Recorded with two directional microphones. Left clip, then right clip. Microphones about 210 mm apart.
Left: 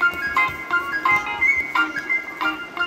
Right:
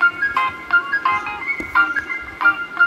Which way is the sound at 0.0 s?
30° left (ahead or behind).